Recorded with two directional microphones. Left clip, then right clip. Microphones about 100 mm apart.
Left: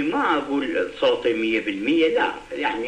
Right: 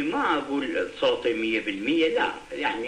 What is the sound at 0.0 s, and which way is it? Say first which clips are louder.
Speech: left 3 dB; 30° left (ahead or behind).